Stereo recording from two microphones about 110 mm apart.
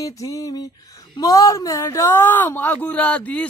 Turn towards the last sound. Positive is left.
turn(degrees=15)  # may be behind; listen again after turning